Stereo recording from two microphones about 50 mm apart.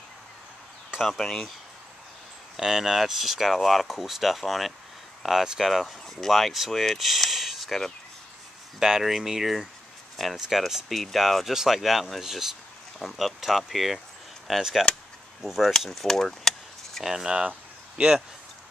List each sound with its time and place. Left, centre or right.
1.1 s speech: centre
2.5 s speech: centre
15.9 s keys jangling: centre
17.0 s speech: centre